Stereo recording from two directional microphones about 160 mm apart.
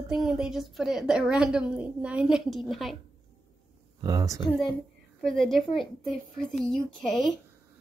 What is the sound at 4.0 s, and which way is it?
Speech, 25° right (ahead or behind).